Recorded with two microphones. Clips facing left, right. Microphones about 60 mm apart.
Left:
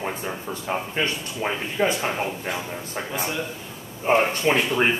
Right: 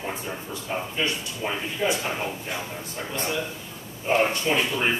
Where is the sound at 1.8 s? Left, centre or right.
Left.